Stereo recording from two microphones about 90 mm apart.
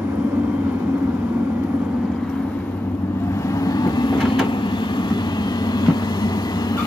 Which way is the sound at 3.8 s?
55° left (ahead or behind).